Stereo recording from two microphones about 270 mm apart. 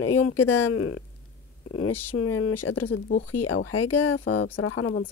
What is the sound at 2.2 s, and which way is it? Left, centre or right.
Speech, left.